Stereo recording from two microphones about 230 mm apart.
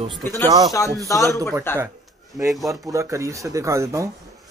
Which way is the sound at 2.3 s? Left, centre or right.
Centre.